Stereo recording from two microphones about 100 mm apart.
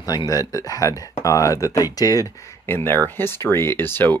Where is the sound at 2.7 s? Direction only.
25° left (ahead or behind).